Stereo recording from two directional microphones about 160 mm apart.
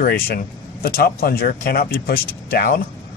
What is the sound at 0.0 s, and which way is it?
Speech, 70° left (ahead or behind).